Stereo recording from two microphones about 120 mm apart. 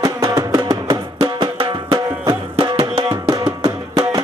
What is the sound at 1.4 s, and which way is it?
Music, 45° right (ahead or behind).